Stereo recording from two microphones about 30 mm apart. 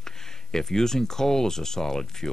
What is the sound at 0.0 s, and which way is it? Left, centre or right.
Speech, centre.